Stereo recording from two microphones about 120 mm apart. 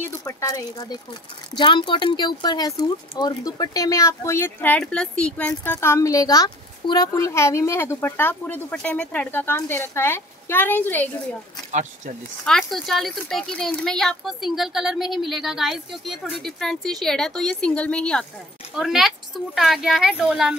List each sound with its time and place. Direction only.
0.2 s speech: 30° left (ahead or behind)
1.5 s speech: 40° left (ahead or behind); by 5.5 s 10° left (ahead or behind)
5.7 s a child's voice: 20° left (ahead or behind)
12.4 s speech: centre (ahead or behind)
18.8 s speech: centre (ahead or behind)